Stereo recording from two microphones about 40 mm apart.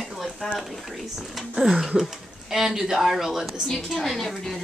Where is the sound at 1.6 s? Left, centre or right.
Centre.